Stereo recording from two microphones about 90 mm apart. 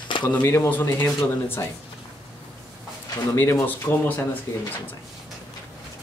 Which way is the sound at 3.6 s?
20° left (ahead or behind).